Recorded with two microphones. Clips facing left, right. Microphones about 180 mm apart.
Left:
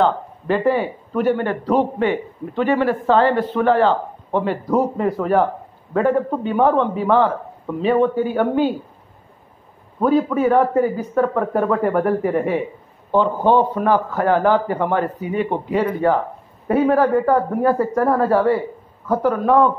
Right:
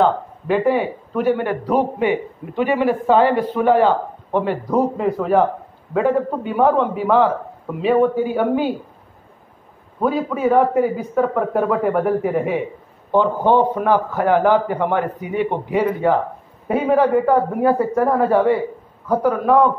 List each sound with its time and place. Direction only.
0.0 s speech: 5° right (ahead or behind)
5.9 s a man's voice: 5° right (ahead or behind)
9.9 s a man's voice: 5° right (ahead or behind)
13.1 s speech: 15° right (ahead or behind)